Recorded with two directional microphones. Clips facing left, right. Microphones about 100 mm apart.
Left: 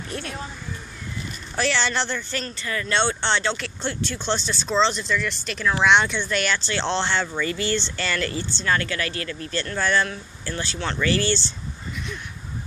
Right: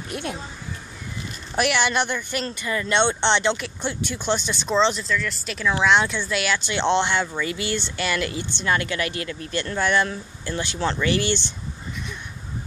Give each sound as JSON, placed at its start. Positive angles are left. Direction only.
{"t": 0.1, "sound": "speech", "side_deg": -15}
{"t": 1.5, "sound": "speech", "side_deg": -15}
{"t": 5.0, "sound": "speech", "side_deg": 0}